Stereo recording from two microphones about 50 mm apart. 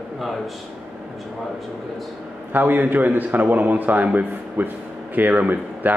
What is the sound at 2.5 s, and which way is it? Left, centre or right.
Speech, right.